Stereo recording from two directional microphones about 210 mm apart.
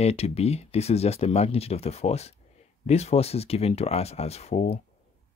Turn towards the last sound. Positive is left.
turn(degrees=30)  # may be behind; listen again after turning